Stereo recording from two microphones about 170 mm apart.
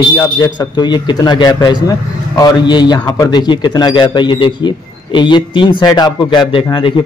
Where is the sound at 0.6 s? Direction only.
25° left (ahead or behind).